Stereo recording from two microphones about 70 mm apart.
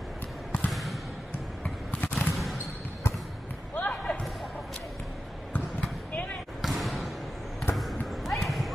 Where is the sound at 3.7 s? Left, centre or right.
Left.